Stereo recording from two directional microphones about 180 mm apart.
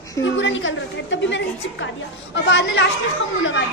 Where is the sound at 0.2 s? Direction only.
90° left.